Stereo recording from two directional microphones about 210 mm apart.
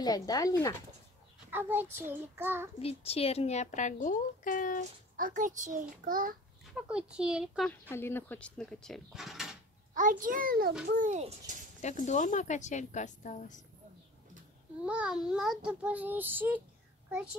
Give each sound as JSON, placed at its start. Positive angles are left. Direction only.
{"t": 0.0, "sound": "speech", "side_deg": 20}
{"t": 1.5, "sound": "child singing", "side_deg": -10}
{"t": 2.8, "sound": "speech", "side_deg": 30}
{"t": 5.1, "sound": "a child's voice", "side_deg": -40}
{"t": 6.7, "sound": "a child's voice", "side_deg": -5}
{"t": 7.9, "sound": "a child's voice", "side_deg": 10}
{"t": 9.9, "sound": "a child's voice", "side_deg": -40}
{"t": 11.8, "sound": "speech", "side_deg": 35}
{"t": 14.9, "sound": "a child's voice", "side_deg": -5}